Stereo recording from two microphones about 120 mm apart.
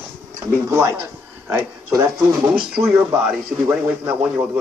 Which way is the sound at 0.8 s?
20° right (ahead or behind).